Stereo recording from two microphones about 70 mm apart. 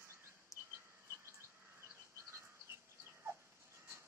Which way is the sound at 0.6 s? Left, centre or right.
Right.